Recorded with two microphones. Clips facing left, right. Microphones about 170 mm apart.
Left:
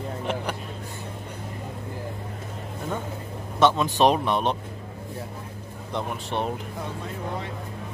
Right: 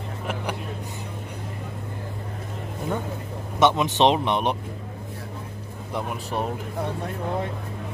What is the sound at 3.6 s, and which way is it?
Speech, 15° right (ahead or behind).